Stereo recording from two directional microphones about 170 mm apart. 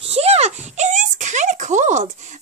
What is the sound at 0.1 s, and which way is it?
Speech, 35° right (ahead or behind).